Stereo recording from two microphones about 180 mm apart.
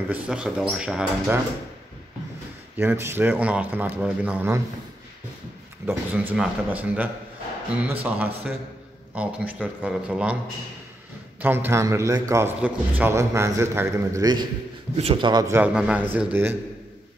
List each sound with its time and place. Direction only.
0.1 s speech: 5° right (ahead or behind)
2.8 s a man's voice: 15° right (ahead or behind)
5.9 s a man's voice: 10° right (ahead or behind)
11.4 s a man's voice: 10° right (ahead or behind)